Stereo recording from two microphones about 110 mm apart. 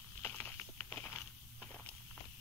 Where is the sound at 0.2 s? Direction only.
15° left (ahead or behind).